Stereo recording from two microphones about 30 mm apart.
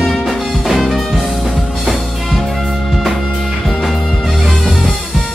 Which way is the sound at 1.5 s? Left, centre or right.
Centre.